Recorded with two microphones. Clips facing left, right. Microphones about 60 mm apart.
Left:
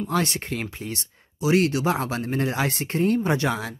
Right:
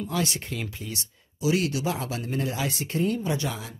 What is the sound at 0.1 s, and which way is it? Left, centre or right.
Speech, left.